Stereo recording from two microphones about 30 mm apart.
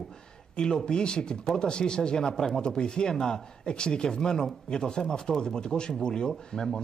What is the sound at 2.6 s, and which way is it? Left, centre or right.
Speech, left.